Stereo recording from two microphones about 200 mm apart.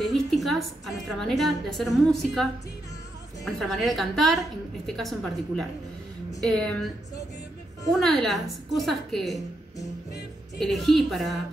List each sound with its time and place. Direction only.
0.0 s a woman's voice: centre (ahead or behind)
3.4 s a woman's voice: centre (ahead or behind)
7.9 s a woman's voice: centre (ahead or behind)
10.6 s a woman's voice: centre (ahead or behind)